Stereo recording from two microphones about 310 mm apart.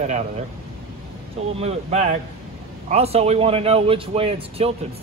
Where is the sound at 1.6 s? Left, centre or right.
Centre.